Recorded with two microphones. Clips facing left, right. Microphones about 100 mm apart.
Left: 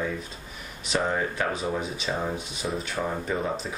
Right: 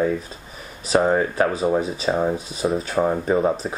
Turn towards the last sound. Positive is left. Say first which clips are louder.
# right 9 dB
turn(degrees=-40)  # may be behind; listen again after turning